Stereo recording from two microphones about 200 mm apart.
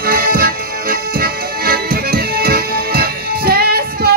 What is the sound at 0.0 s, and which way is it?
Music, 50° right (ahead or behind).